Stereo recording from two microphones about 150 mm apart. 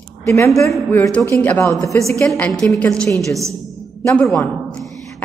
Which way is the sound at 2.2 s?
5° left (ahead or behind).